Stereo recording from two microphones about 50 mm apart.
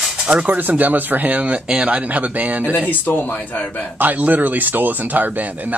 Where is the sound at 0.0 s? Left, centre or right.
Centre.